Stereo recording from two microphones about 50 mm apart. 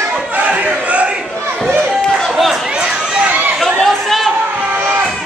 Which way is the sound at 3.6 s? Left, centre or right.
Centre.